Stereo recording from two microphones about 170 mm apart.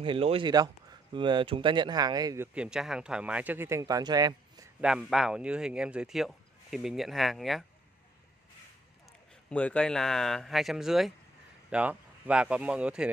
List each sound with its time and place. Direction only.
0.0 s speech: 30° right (ahead or behind)
4.8 s speech: 5° right (ahead or behind)
9.5 s speech: 10° left (ahead or behind)